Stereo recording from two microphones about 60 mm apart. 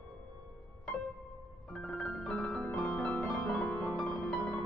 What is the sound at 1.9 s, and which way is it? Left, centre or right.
Music, centre.